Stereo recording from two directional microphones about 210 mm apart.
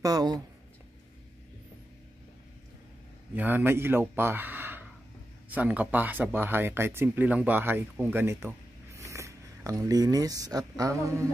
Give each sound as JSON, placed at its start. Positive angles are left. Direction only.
{"t": 0.0, "sound": "speech", "side_deg": -20}
{"t": 3.3, "sound": "speech", "side_deg": -10}